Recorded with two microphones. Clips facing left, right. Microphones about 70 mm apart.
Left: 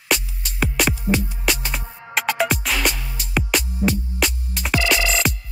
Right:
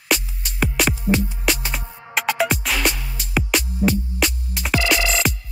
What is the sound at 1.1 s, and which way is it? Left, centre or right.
Music, centre.